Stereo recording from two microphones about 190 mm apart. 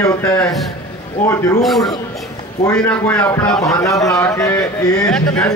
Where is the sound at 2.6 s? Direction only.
10° left (ahead or behind).